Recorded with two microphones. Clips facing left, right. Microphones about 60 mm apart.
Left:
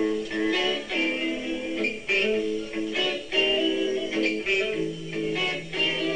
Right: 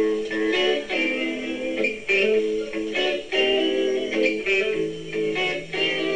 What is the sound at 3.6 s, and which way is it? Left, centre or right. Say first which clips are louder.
Music: right 3 dB; right.